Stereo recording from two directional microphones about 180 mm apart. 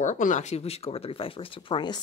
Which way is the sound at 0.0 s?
45° left (ahead or behind).